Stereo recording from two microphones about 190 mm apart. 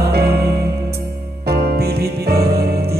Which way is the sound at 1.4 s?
55° right (ahead or behind).